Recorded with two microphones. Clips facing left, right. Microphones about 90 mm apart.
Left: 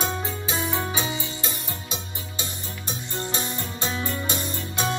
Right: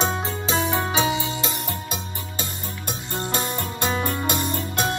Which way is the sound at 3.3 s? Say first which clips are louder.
Right 4 dB; 55° right (ahead or behind).